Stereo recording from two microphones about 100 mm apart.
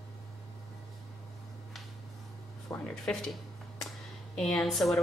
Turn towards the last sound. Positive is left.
turn(degrees=0)  # may be behind; listen again after turning